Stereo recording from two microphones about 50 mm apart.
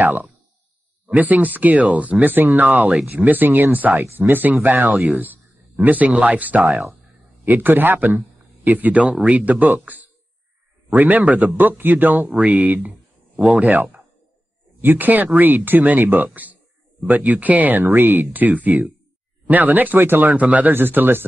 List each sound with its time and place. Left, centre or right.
0.0 s speech: right
20.3 s speech: right
20.7 s speech: right